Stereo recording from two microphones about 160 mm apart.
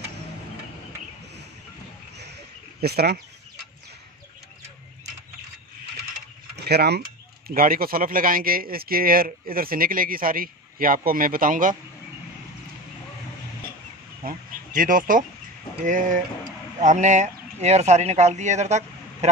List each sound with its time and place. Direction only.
2.8 s speech: 85° right
6.5 s a sound: 90° right
7.4 s speech: 65° right (ahead or behind)
14.2 s speech: 60° right (ahead or behind)